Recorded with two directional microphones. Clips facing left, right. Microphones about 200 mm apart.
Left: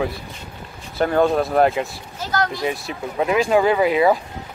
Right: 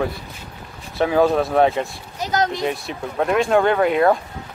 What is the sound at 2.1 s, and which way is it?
Speech, 20° right (ahead or behind).